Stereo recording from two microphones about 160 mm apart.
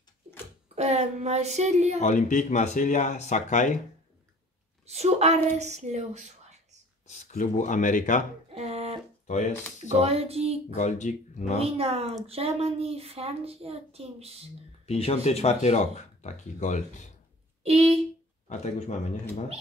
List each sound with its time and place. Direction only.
0.7 s a child's voice: 45° right (ahead or behind)
2.0 s speech: 50° left (ahead or behind)
4.8 s a child's voice: 40° right (ahead or behind)
7.1 s speech: 50° left (ahead or behind)
8.5 s a sound: 40° right (ahead or behind)
10.0 s a woman's voice: 40° right (ahead or behind)
10.8 s speech: 50° left (ahead or behind)
11.6 s a woman's voice: 40° right (ahead or behind)
14.9 s speech: 40° left (ahead or behind)
17.6 s a woman's voice: 40° right (ahead or behind)
18.5 s speech: 45° left (ahead or behind)